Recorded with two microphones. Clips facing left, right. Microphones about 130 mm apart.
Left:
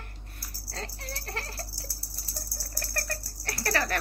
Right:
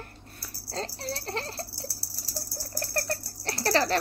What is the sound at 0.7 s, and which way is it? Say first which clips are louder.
Rattle: right 6 dB; 30° right (ahead or behind).